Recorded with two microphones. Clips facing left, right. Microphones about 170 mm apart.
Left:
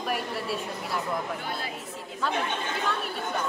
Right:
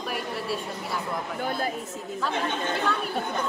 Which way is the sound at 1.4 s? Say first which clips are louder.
Right 6 dB; 45° right (ahead or behind).